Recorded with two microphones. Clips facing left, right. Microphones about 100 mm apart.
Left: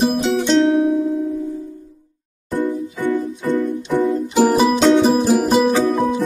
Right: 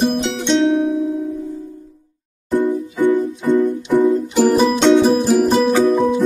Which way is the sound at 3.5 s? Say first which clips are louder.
Right 4 dB; centre (ahead or behind).